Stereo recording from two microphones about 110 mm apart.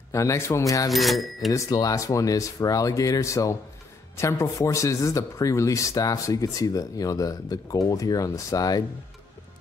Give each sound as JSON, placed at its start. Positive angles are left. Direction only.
{"t": 0.1, "sound": "speech", "side_deg": 30}
{"t": 0.9, "sound": "speech", "side_deg": 0}
{"t": 1.5, "sound": "speech", "side_deg": 30}